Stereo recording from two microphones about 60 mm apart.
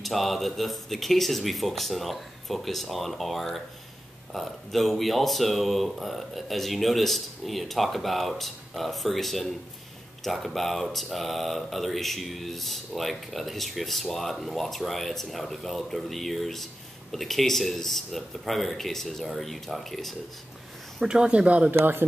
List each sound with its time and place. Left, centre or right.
0.0 s speech: centre
21.0 s speech: centre
21.7 s speech: right